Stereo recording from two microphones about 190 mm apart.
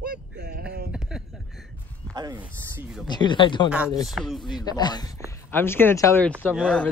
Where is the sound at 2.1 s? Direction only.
20° right (ahead or behind).